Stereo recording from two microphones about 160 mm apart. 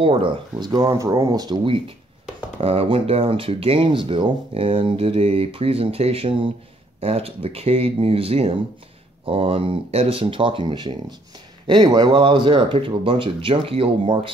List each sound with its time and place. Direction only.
0.0 s speech: 30° right (ahead or behind)